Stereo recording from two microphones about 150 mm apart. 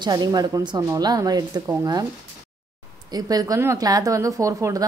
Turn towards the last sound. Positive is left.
turn(degrees=-20)  # may be behind; listen again after turning